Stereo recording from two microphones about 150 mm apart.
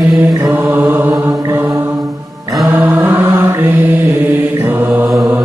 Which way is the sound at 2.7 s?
15° right (ahead or behind).